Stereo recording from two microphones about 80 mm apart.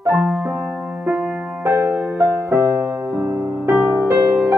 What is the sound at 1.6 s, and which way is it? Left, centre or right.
Music, right.